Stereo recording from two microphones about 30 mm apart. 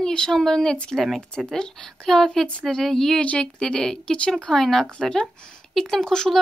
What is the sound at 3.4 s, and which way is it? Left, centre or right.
Speech, left.